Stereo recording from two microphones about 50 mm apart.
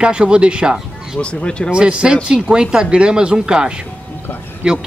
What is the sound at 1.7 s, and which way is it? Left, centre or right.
A man's voice, centre.